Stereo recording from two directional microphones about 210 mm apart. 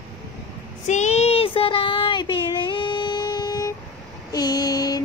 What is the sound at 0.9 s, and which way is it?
Child singing, 35° left (ahead or behind).